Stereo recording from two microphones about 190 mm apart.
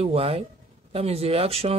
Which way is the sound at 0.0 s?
30° right (ahead or behind).